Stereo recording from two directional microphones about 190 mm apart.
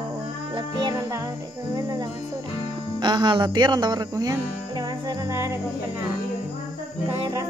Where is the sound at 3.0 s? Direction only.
25° right (ahead or behind).